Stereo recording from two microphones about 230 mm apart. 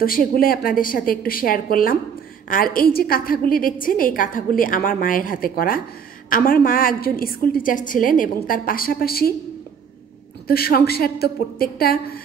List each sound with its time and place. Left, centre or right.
0.0 s a woman's voice: left
10.4 s a woman's voice: left